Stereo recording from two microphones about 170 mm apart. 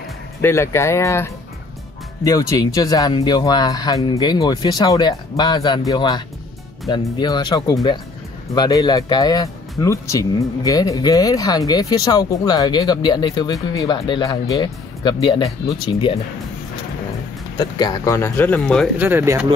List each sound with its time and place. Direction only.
0.4 s speech: 15° left (ahead or behind); by 16.2 s 30° left (ahead or behind)
17.6 s speech: 25° left (ahead or behind); by 18.9 s 10° left (ahead or behind)
18.9 s speech: 10° right (ahead or behind)